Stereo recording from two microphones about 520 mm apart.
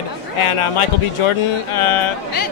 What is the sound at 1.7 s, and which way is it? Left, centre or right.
Speech, left.